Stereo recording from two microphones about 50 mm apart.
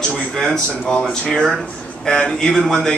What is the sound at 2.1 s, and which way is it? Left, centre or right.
Speech, centre.